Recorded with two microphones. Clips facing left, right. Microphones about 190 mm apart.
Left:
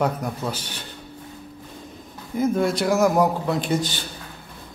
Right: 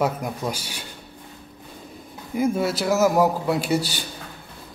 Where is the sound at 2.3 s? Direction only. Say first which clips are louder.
Left 1 dB; 10° right (ahead or behind).